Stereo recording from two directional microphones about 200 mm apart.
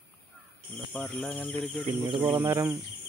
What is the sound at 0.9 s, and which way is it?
Speech, 5° left (ahead or behind).